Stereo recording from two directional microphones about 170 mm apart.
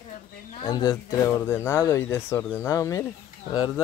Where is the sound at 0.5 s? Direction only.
25° left (ahead or behind).